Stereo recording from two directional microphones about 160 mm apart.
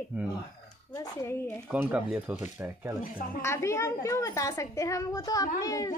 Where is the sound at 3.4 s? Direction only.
15° left (ahead or behind).